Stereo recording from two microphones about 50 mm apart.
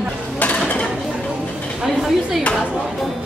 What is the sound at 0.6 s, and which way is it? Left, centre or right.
Mechanisms, centre.